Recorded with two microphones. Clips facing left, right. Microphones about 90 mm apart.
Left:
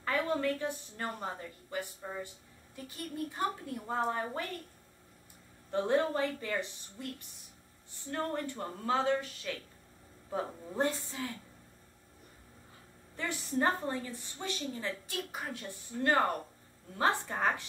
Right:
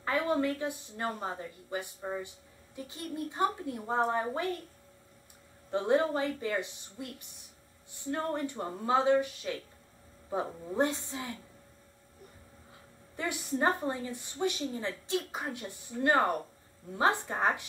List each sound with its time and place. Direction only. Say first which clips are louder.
0.0 s a woman's voice: right 2 dB; 20° right (ahead or behind)
5.7 s a woman's voice: right 2 dB; 15° right (ahead or behind)
13.1 s a woman's voice: right 1 dB; 15° right (ahead or behind)